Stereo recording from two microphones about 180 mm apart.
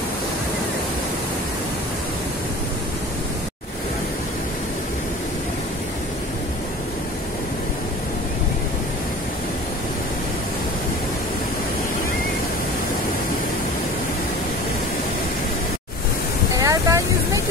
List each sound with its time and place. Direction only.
16.5 s vehicle: 20° right (ahead or behind)